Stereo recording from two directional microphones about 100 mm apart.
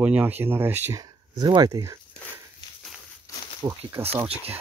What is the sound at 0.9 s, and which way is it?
Speech, 40° right (ahead or behind).